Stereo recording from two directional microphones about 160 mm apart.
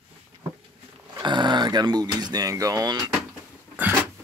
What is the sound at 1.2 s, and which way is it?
Speech, 30° right (ahead or behind).